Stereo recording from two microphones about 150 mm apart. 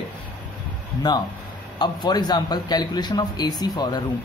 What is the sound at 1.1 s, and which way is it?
A man's voice, 30° left (ahead or behind).